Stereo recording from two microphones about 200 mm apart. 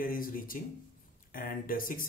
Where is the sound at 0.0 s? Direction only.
45° left (ahead or behind).